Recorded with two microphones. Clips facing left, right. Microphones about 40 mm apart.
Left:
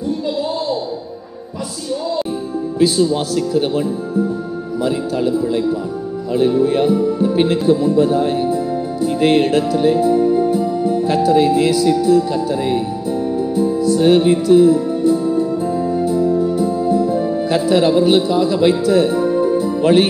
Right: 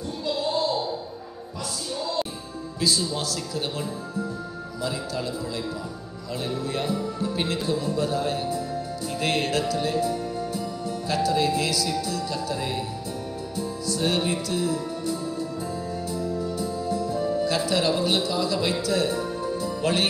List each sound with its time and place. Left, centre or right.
0.4 s a sound: centre
3.0 s speech: left
6.3 s speech: left
9.0 s music: left
11.9 s speech: left
13.4 s music: left
17.6 s speech: left